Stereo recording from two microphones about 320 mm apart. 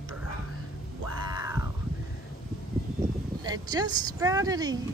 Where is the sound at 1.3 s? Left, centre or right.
Centre.